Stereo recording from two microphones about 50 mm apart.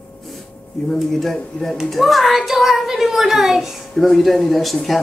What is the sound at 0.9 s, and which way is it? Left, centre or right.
Speech, centre.